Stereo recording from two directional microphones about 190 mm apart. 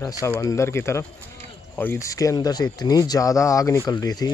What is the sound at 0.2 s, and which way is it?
Speech, 15° left (ahead or behind).